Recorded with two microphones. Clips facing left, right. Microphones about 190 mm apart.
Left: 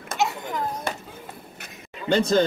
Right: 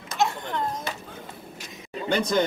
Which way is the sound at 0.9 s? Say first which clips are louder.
Left 4 dB; 50° left (ahead or behind).